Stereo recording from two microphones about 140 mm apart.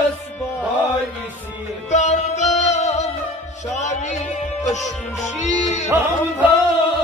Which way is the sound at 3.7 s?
55° left (ahead or behind).